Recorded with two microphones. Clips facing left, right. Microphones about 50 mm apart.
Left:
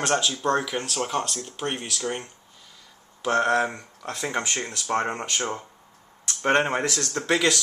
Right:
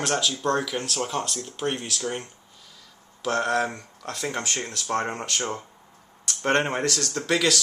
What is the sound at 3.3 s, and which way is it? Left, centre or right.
Speech, left.